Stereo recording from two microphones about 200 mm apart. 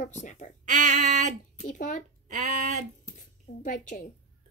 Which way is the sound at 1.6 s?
40° left (ahead or behind).